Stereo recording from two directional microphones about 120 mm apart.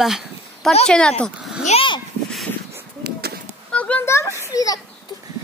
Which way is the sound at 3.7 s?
10° left (ahead or behind).